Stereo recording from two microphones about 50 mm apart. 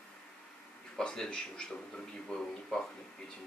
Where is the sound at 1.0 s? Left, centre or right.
Centre.